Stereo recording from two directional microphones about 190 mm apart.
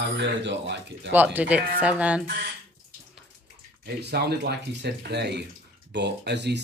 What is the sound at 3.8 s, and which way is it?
Speech, 55° right (ahead or behind).